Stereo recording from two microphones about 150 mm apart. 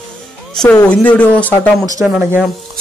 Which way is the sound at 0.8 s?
10° left (ahead or behind).